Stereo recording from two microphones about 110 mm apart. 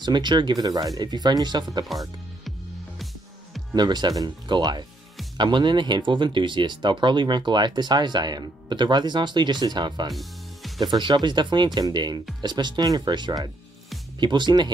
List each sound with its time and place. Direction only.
0.0 s speech: 45° right (ahead or behind)
1.9 s speech: centre (ahead or behind)
3.7 s speech: 40° right (ahead or behind)